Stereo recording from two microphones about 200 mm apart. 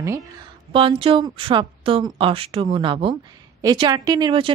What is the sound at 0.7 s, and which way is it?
A woman's voice, 25° right (ahead or behind).